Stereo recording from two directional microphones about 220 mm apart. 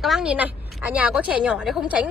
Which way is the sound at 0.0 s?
Centre (ahead or behind).